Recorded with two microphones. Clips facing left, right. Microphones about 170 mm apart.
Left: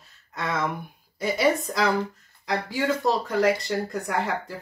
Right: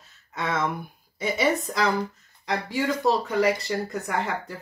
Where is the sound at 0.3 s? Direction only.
Centre (ahead or behind).